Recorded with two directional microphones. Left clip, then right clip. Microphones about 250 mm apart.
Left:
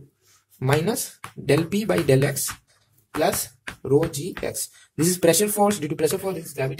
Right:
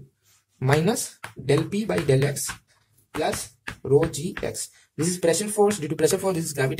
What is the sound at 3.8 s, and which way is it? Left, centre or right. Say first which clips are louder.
Speech: even; centre.